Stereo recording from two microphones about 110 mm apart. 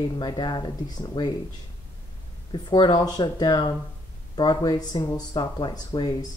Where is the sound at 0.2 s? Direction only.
40° left (ahead or behind).